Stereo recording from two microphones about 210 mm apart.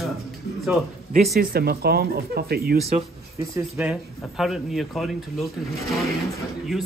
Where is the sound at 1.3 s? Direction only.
45° right (ahead or behind).